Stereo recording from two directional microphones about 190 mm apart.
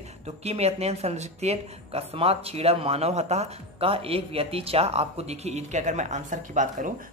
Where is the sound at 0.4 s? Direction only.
35° right (ahead or behind).